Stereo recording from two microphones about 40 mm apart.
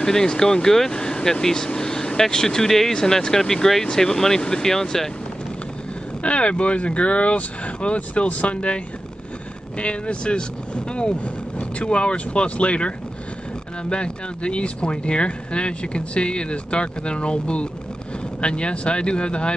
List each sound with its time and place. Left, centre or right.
0.0 s speech: centre
6.2 s speech: left